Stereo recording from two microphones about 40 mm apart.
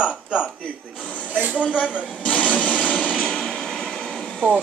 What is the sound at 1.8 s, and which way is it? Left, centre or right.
Speech, left.